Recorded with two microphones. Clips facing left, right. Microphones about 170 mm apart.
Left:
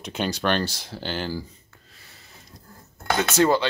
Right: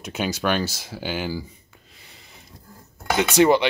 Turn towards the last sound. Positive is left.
turn(degrees=-15)  # may be behind; listen again after turning